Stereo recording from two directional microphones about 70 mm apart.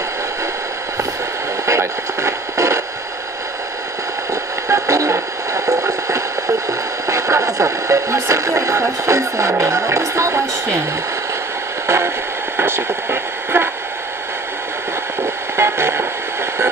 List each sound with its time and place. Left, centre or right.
1.7 s radio: right
4.6 s radio: right
12.5 s radio: right
15.5 s a sound: right